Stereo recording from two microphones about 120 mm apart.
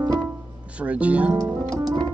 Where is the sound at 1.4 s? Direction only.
35° right (ahead or behind).